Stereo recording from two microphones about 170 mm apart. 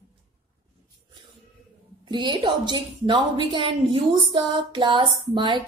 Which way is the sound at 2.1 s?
30° right (ahead or behind).